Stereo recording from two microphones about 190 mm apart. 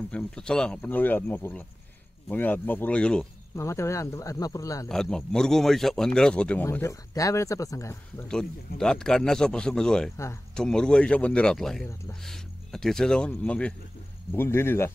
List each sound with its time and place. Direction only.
0.1 s speech: 5° left (ahead or behind)
4.8 s speech: 5° left (ahead or behind)